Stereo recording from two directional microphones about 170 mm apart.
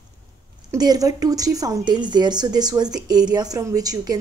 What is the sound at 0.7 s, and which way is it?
Speech, 20° right (ahead or behind).